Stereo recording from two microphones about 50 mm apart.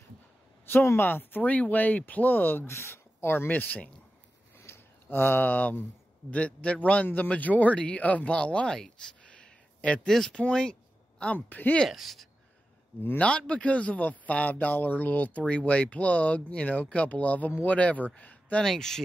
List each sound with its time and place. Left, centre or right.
0.7 s speech: left
1.4 s speech: left
2.7 s speech: left
3.5 s speech: left
4.6 s a sound: left
6.3 s a man's voice: left
9.2 s a sound: left
10.1 s speech: centre
10.5 s a sound: centre
11.3 s speech: left
11.9 s speech: centre
13.2 s a man's voice: left
18.6 s speech: centre